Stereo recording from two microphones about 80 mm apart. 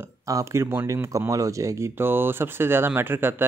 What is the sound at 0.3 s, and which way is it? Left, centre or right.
Speech, right.